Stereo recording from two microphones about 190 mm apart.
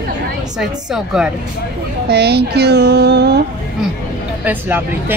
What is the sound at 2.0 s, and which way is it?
A child's voice, 60° right (ahead or behind).